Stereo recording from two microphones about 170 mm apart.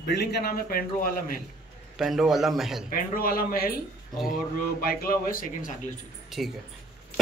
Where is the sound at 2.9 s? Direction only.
60° left (ahead or behind).